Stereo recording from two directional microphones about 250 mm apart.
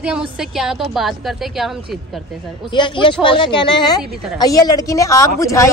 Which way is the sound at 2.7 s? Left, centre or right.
Centre.